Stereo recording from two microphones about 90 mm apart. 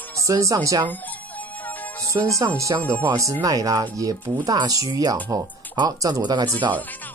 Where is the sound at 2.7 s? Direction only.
55° right (ahead or behind).